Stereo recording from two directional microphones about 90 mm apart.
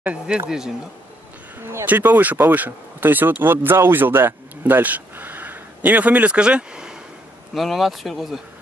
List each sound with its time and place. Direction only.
0.0 s speech: 15° right (ahead or behind)
1.9 s speech: 20° right (ahead or behind); by 8.4 s centre (ahead or behind)